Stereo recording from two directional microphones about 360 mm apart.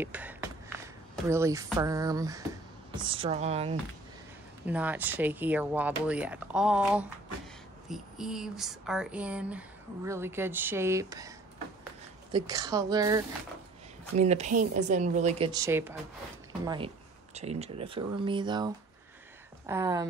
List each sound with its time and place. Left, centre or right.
0.0 s a sound: centre
1.3 s speech: centre
4.6 s speech: centre